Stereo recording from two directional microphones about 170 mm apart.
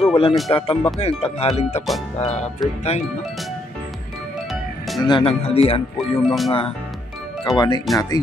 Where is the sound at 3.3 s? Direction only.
Centre (ahead or behind).